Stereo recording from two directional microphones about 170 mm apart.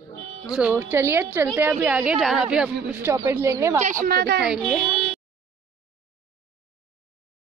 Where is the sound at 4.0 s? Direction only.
65° right (ahead or behind).